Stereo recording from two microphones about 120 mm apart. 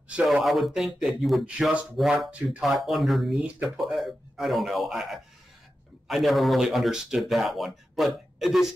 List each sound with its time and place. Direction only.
0.1 s speech: centre (ahead or behind)